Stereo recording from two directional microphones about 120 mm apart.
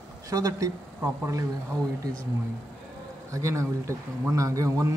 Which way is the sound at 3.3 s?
25° right (ahead or behind).